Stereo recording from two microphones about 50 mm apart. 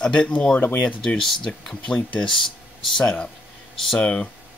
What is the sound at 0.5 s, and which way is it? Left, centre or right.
Speech, left.